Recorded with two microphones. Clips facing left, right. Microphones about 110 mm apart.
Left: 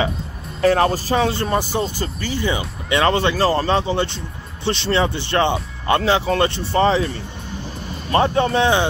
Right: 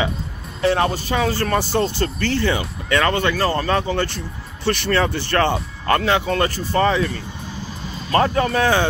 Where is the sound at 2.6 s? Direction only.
25° left (ahead or behind).